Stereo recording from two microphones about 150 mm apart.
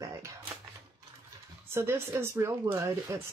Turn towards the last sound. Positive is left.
turn(degrees=-20)  # may be behind; listen again after turning